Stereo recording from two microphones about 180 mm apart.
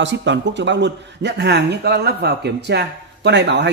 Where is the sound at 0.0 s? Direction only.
80° right.